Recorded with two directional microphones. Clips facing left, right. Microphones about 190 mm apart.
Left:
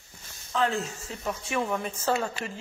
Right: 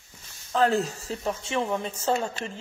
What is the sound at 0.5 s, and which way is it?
Speech, 40° right (ahead or behind).